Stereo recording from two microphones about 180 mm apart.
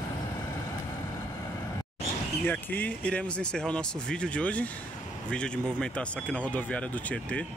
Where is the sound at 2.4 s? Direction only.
10° left (ahead or behind).